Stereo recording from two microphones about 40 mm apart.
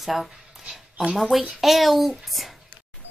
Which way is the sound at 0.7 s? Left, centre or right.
Centre.